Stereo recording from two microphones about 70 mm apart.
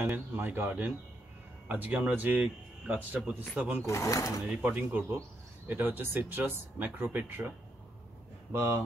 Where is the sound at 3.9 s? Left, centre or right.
Left.